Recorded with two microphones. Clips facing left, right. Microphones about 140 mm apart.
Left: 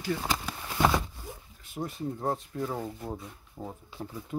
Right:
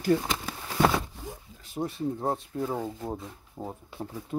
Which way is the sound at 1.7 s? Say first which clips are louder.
Right 4 dB; 30° right (ahead or behind).